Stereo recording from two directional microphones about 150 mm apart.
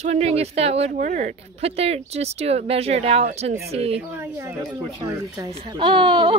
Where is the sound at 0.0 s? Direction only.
45° right (ahead or behind).